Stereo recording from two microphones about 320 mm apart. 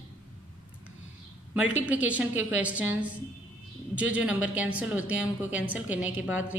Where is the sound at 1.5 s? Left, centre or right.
Centre.